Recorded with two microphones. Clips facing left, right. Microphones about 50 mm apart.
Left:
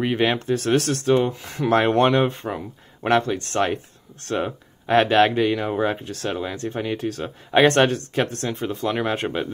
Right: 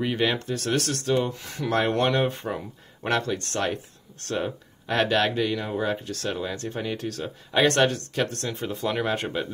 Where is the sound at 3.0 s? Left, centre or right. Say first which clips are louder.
Left 6 dB; centre.